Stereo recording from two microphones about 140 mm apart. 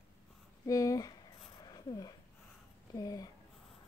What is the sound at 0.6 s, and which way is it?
Speech, 25° left (ahead or behind).